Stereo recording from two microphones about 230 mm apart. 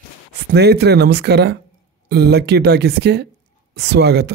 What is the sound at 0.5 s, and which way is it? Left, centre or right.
Speech, right.